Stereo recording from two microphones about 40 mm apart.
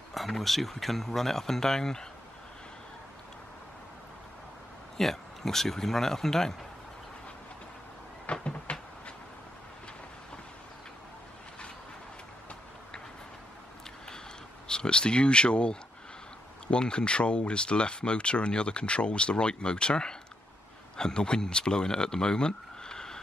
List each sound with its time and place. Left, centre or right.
0.1 s speech: centre
4.9 s speech: centre
8.3 s cupboard open or close: left
14.7 s speech: left